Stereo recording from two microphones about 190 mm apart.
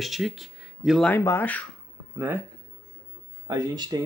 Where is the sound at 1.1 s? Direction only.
10° left (ahead or behind).